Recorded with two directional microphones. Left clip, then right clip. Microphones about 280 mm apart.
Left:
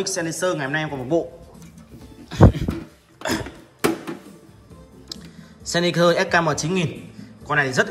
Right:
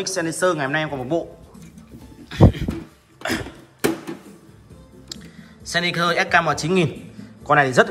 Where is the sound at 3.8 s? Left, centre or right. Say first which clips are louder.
Even; centre.